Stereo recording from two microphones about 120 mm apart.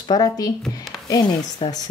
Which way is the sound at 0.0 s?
35° left (ahead or behind).